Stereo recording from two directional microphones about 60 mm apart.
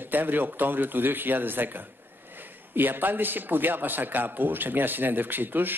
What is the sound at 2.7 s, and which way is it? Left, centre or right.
A man's voice, right.